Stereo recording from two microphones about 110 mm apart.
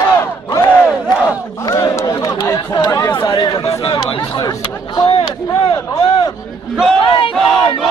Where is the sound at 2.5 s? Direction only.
40° left (ahead or behind).